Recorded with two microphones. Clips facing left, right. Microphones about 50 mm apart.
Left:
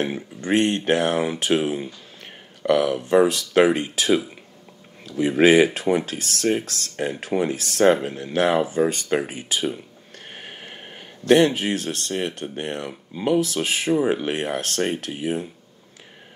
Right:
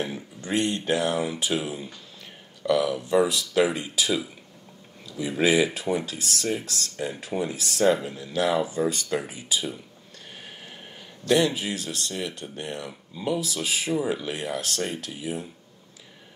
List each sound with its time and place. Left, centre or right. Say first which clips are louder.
0.0 s speech: left 6 dB; left
10.3 s a sound: left 5 dB; left
11.2 s speech: left 6 dB; left